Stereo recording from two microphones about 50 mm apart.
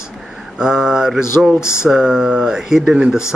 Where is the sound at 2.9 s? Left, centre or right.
Centre.